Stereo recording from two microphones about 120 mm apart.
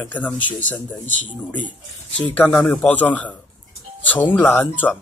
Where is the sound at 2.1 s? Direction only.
15° left (ahead or behind).